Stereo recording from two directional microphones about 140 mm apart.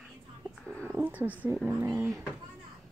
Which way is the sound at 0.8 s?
15° right (ahead or behind).